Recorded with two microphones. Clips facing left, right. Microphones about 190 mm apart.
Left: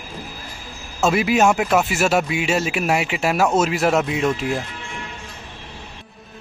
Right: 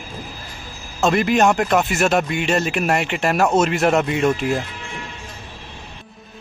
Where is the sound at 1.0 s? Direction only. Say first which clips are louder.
Right 1 dB; 5° left (ahead or behind).